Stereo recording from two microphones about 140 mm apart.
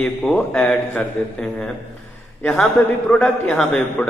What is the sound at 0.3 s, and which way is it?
Speech, 10° left (ahead or behind).